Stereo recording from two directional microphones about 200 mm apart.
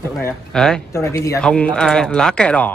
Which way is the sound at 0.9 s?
15° left (ahead or behind).